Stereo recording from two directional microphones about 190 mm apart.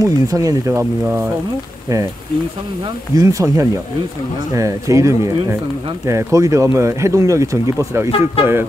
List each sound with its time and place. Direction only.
0.0 s speech: 20° right (ahead or behind)